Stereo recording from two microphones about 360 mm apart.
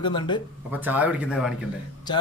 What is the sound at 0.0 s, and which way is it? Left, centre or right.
Speech, centre.